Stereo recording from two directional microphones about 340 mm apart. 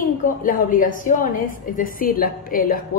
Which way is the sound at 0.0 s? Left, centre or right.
Left.